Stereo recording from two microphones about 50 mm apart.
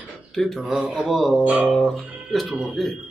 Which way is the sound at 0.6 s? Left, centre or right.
Centre.